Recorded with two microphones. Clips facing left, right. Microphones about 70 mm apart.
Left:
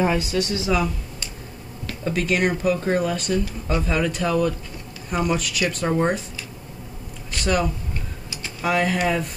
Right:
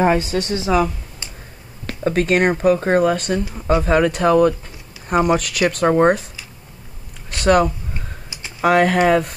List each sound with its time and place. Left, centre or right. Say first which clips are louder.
0.0 s a woman's voice: right 4 dB; right
1.9 s speech: right 6 dB; right
7.4 s speech: right 8 dB; right
8.3 s computer keyboard: left 1 dB; right
8.6 s speech: right 7 dB; right